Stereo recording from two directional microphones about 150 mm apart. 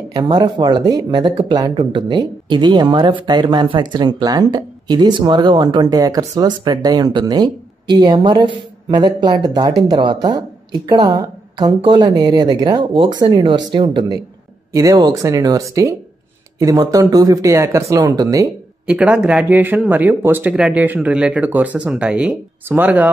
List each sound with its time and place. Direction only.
0.1 s speech: 25° right (ahead or behind)
18.9 s speech: 10° right (ahead or behind)